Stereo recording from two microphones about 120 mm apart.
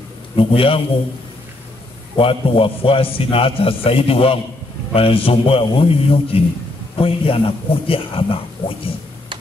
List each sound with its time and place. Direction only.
0.4 s a man's voice: 50° left (ahead or behind)
2.1 s a man's voice: 50° left (ahead or behind)